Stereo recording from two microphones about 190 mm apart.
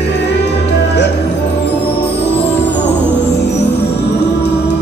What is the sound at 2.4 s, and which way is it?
Music, 10° left (ahead or behind).